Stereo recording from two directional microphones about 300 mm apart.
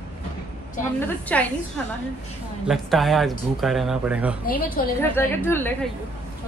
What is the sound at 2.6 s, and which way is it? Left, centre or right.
Speech, centre.